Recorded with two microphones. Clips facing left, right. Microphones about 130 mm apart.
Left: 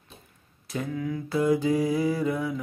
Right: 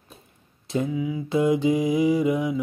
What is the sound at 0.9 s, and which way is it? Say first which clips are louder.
Mantra: even; 10° right (ahead or behind).